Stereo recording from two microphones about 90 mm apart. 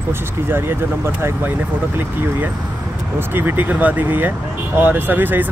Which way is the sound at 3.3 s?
20° right (ahead or behind).